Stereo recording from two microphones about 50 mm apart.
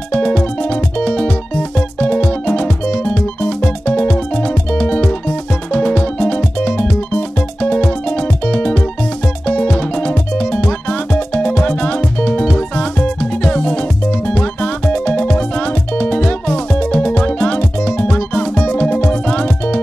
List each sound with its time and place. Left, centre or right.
0.1 s music: left